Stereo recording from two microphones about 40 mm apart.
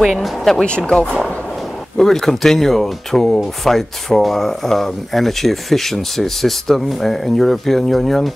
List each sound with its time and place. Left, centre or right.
0.0 s speech: centre
0.7 s speech: left; by 8.3 s centre